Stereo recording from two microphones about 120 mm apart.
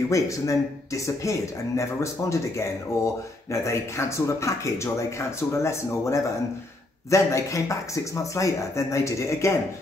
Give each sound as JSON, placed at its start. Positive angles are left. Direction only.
{"t": 0.1, "sound": "a man's voice", "side_deg": 25}
{"t": 3.6, "sound": "a man's voice", "side_deg": 25}